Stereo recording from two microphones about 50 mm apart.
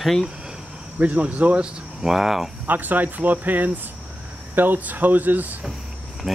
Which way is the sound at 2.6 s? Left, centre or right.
Right.